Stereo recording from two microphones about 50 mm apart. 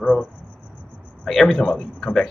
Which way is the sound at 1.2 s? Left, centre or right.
Centre.